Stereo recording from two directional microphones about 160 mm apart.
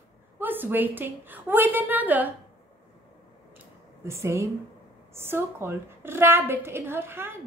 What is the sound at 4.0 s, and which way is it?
A woman's voice, 15° right (ahead or behind).